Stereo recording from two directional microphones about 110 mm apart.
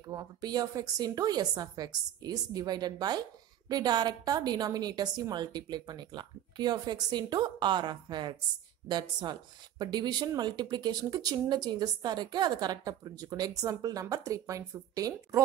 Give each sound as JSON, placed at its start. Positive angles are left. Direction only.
{"t": 0.1, "sound": "a woman's voice", "side_deg": -35}